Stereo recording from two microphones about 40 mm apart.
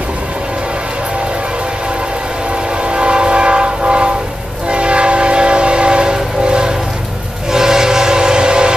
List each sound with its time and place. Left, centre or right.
2.8 s train: right